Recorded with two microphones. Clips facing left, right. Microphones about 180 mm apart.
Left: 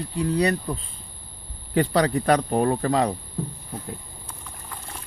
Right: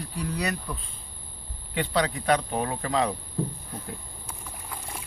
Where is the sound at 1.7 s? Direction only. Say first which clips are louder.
Left 6 dB; 45° left (ahead or behind).